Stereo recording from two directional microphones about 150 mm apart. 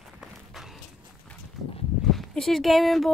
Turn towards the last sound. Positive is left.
turn(degrees=0)  # may be behind; listen again after turning